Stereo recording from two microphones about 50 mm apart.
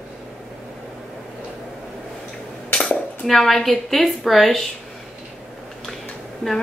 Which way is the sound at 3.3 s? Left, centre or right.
Centre.